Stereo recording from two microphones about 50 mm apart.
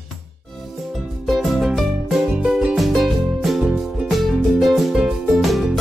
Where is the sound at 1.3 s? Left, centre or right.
Centre.